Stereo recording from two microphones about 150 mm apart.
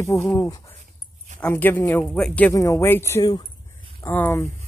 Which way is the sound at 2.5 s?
20° left (ahead or behind).